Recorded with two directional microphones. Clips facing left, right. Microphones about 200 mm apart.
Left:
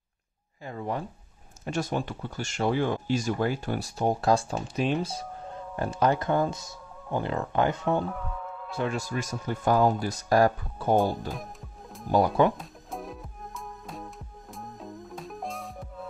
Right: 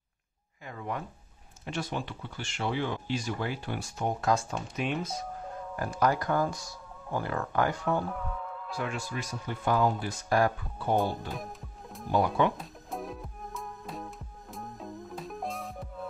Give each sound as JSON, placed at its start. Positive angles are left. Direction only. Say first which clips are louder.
{"t": 0.7, "sound": "speech", "louder": "left 4 dB", "side_deg": 30}
{"t": 1.6, "sound": "speech", "louder": "left 5 dB", "side_deg": 45}
{"t": 8.7, "sound": "speech", "louder": "left 5 dB", "side_deg": 35}
{"t": 12.1, "sound": "speech", "louder": "left 4 dB", "side_deg": 40}
{"t": 12.5, "sound": "music", "louder": "even", "side_deg": 0}